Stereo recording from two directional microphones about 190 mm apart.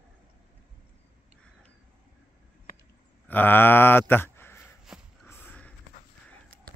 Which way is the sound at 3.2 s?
10° left (ahead or behind).